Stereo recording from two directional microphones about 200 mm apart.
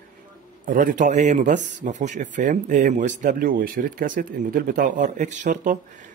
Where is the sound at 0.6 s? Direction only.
40° right (ahead or behind).